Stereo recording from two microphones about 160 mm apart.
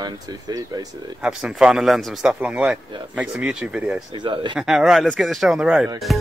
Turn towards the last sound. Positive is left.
turn(degrees=-5)  # may be behind; listen again after turning